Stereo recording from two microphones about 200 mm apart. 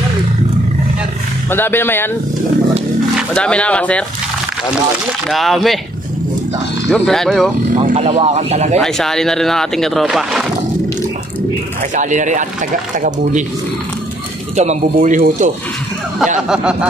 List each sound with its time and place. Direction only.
1.5 s speech: 10° left (ahead or behind)
3.2 s speech: 5° left (ahead or behind)
5.3 s speech: centre (ahead or behind)
6.9 s speech: centre (ahead or behind)
7.9 s speech: 30° right (ahead or behind)
8.7 s speech: centre (ahead or behind)
11.9 s speech: 40° right (ahead or behind)
14.6 s speech: 35° right (ahead or behind)
16.4 s speech: 5° right (ahead or behind)